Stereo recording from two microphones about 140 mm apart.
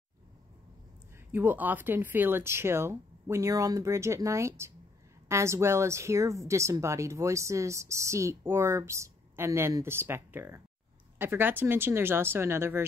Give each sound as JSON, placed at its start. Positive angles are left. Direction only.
{"t": 1.3, "sound": "a woman's voice", "side_deg": -15}